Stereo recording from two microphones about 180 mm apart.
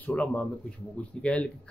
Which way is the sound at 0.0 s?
5° left (ahead or behind).